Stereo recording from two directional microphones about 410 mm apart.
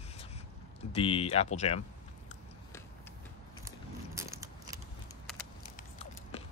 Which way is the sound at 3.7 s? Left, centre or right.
Centre.